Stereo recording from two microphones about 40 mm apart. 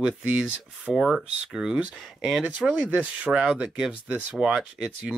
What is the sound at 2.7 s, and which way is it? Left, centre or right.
Speech, right.